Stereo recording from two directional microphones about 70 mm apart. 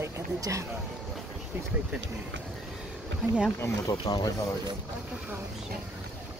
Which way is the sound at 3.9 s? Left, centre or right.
Left.